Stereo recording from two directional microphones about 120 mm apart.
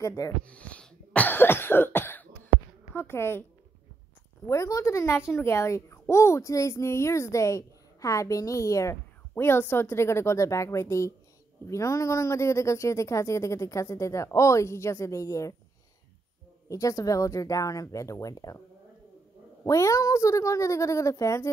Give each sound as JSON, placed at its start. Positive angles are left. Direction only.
{"t": 0.0, "sound": "speech", "side_deg": 25}
{"t": 0.5, "sound": "cough", "side_deg": 10}
{"t": 2.9, "sound": "speech", "side_deg": 20}
{"t": 4.5, "sound": "speech", "side_deg": 25}
{"t": 16.6, "sound": "speech", "side_deg": 30}
{"t": 19.6, "sound": "speech", "side_deg": 25}